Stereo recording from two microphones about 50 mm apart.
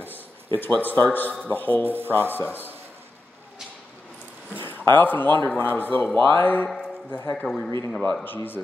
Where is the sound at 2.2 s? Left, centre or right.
Left.